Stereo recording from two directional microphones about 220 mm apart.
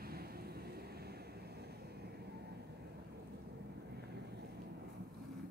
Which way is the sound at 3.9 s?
50° right (ahead or behind).